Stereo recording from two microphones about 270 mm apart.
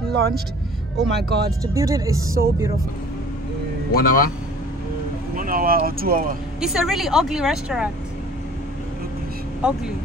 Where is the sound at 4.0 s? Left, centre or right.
Left.